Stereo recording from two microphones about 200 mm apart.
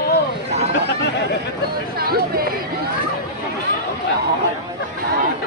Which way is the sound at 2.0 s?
50° right (ahead or behind).